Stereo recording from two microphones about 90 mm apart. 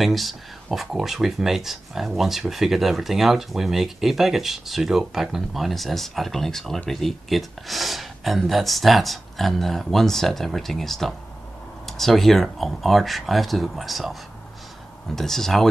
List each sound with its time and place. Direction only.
0.0 s speech: centre (ahead or behind)
15.1 s speech: 5° left (ahead or behind)